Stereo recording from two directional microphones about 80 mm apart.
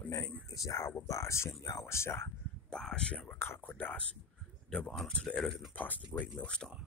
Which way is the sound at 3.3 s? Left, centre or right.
Left.